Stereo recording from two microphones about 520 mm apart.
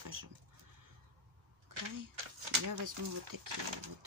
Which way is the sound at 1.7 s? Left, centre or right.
Right.